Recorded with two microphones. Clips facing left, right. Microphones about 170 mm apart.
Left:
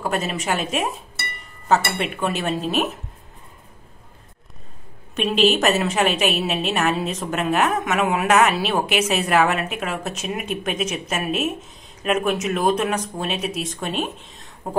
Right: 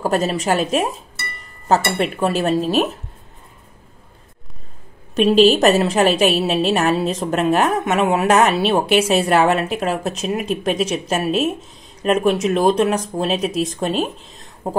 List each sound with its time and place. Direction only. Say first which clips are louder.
0.0 s a woman's voice: right 5 dB; 40° right (ahead or behind)
2.0 s a woman's voice: right 5 dB; 35° right (ahead or behind)
5.1 s a woman's voice: right 6 dB; 35° right (ahead or behind)